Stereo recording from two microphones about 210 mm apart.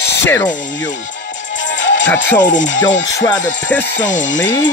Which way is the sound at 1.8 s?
60° left (ahead or behind).